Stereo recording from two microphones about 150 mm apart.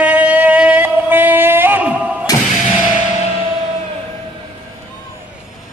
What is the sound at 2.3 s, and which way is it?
Music, 25° left (ahead or behind).